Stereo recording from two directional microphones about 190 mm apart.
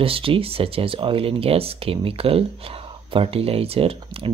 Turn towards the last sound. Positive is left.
turn(degrees=-30)  # may be behind; listen again after turning